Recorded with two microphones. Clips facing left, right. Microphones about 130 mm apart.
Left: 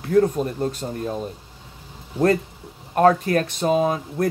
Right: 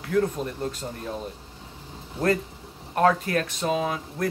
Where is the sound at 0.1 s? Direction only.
35° left (ahead or behind).